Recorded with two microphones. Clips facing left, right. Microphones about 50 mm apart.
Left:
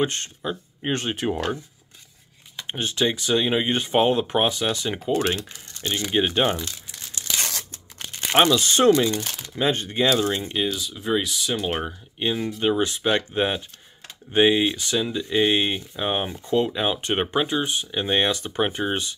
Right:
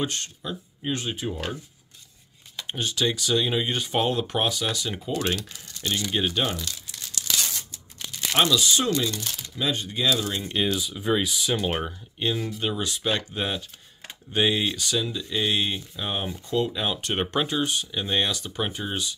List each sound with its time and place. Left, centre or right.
0.0 s speech: left
0.9 s speech: left
2.6 s speech: left
7.7 s crumpling: left
9.0 s speech: left
10.7 s speech: centre
12.2 s speech: centre
12.6 s speech: left